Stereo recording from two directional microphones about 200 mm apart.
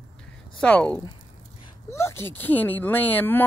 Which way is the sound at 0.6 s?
5° left (ahead or behind).